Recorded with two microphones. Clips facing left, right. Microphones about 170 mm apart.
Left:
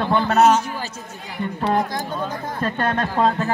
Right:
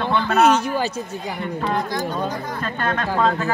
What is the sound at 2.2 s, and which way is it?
Speech, 35° left (ahead or behind).